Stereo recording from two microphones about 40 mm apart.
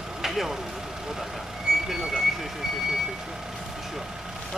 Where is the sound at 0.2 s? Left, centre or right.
Centre.